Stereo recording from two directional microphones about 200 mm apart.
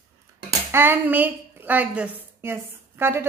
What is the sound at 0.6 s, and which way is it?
A woman's voice, 10° right (ahead or behind).